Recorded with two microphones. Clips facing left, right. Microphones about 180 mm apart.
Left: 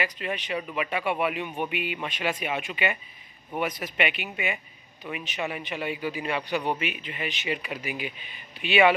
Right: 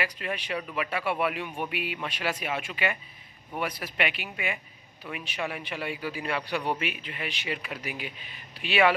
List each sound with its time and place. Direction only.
0.0 s a man's voice: centre (ahead or behind)